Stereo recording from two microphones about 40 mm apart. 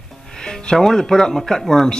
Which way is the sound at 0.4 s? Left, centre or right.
Centre.